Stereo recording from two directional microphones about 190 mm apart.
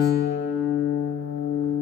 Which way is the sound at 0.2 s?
60° left (ahead or behind).